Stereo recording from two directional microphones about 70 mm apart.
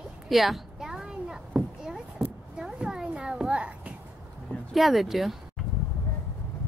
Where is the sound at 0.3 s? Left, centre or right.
Centre.